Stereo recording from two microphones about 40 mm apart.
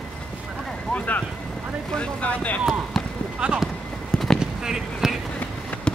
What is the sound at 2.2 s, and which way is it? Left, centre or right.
Speech, left.